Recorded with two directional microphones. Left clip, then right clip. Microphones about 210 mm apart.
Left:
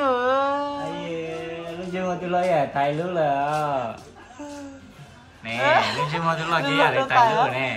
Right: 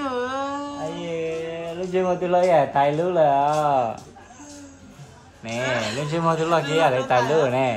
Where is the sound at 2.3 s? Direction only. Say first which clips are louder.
Right 3 dB; 35° right (ahead or behind).